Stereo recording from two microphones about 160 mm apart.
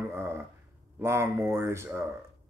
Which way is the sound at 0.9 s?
15° right (ahead or behind).